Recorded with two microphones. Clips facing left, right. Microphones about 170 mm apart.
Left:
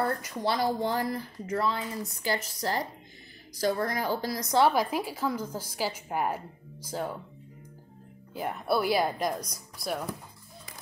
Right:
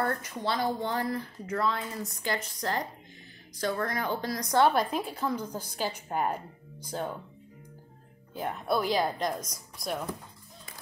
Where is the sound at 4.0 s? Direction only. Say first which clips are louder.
Left 2 dB; 35° left (ahead or behind).